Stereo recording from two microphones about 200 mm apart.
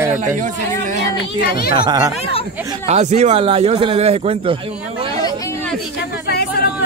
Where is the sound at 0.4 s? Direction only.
40° right (ahead or behind).